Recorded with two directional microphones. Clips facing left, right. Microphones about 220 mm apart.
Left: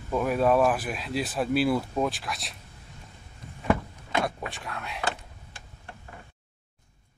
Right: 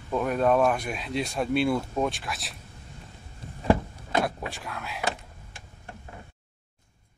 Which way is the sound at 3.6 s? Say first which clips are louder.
Right 3 dB; 35° right (ahead or behind).